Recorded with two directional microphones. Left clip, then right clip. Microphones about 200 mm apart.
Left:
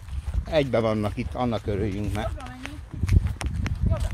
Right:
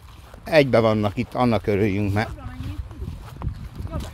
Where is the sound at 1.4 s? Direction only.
35° right (ahead or behind).